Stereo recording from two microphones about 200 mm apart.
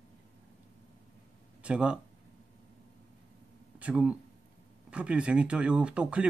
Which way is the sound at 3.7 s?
5° right (ahead or behind).